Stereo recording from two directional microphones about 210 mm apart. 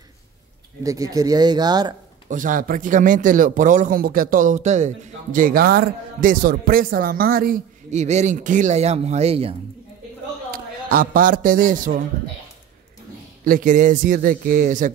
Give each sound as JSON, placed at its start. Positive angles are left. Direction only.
{"t": 0.8, "sound": "speech", "side_deg": -15}
{"t": 2.2, "sound": "speech", "side_deg": -40}
{"t": 10.5, "sound": "a man's voice", "side_deg": -45}
{"t": 13.5, "sound": "speech", "side_deg": -40}